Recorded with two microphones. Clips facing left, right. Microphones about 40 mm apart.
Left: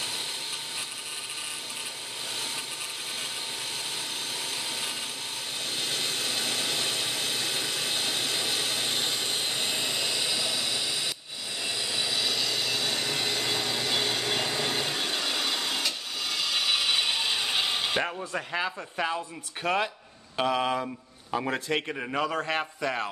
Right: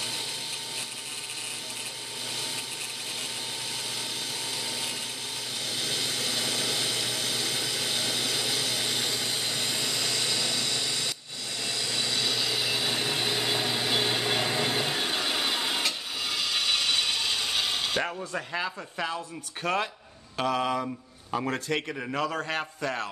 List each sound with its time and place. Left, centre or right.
5.8 s engine: left; by 11.1 s centre
11.6 s a sound: centre
16.3 s ratchet: centre
18.0 s a man's voice: centre
20.8 s a sound: centre
21.5 s a man's voice: centre